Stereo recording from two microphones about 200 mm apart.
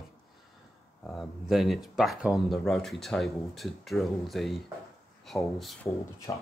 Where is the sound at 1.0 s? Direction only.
Centre (ahead or behind).